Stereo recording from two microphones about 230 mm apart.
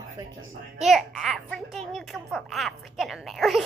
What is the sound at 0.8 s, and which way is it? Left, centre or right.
Speech, centre.